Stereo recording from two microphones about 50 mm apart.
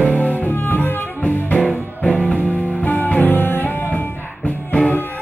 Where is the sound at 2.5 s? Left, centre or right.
Left.